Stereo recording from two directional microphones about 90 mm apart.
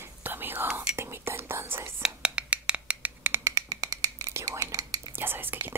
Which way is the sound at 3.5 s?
40° right (ahead or behind).